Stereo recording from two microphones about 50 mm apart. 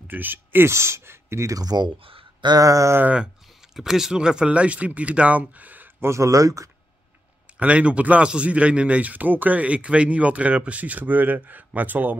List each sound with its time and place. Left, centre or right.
0.1 s speech: right
0.7 s speech: right
2.7 s speech: right
3.7 s speech: centre; by 5.9 s right
5.9 s speech: right
7.5 s speech: right